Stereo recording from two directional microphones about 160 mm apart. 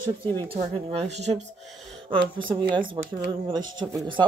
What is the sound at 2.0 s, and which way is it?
Speech, 30° right (ahead or behind).